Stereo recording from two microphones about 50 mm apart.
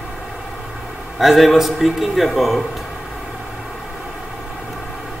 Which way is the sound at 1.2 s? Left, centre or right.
Centre.